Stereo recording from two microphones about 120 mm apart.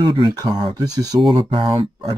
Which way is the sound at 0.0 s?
40° right (ahead or behind).